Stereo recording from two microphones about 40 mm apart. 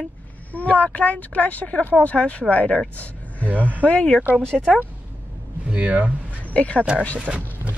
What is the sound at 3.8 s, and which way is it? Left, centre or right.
Speech, left.